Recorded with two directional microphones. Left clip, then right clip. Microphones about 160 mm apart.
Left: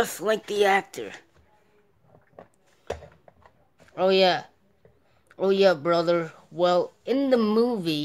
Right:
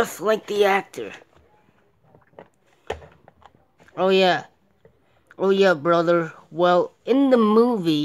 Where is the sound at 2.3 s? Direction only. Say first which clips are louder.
Right 3 dB; 10° right (ahead or behind).